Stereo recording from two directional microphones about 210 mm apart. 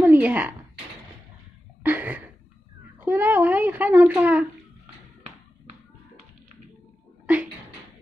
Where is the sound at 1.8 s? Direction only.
10° right (ahead or behind).